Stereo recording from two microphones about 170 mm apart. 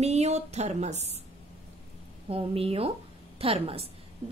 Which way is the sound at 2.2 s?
35° right (ahead or behind).